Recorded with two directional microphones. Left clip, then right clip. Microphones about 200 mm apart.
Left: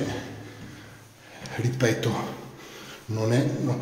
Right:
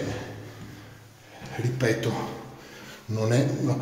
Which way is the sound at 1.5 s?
15° left (ahead or behind).